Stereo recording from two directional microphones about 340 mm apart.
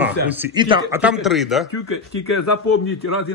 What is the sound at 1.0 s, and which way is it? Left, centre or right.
Speech, centre.